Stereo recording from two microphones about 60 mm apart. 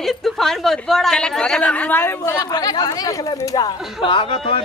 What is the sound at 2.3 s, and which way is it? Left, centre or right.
Speech, left.